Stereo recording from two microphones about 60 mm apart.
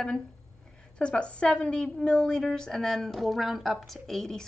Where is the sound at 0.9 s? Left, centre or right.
Centre.